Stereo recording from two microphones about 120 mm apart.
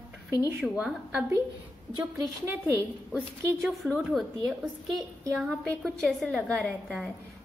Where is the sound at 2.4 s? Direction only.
20° right (ahead or behind).